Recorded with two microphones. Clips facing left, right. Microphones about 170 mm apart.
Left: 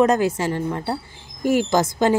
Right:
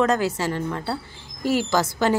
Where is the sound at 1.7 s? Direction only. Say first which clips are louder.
Left 3 dB; 20° left (ahead or behind).